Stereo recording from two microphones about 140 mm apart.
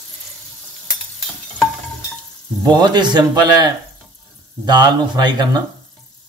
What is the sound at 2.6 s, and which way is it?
A man's voice, 30° right (ahead or behind).